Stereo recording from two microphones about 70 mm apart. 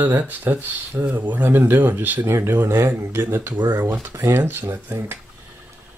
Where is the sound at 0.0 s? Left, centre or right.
Right.